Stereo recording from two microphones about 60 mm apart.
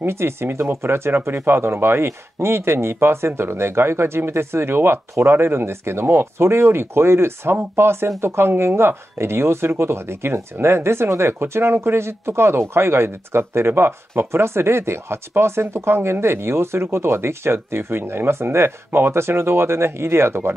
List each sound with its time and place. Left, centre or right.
0.0 s speech: right